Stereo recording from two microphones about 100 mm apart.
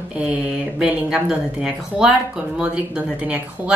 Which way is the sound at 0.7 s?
10° right (ahead or behind).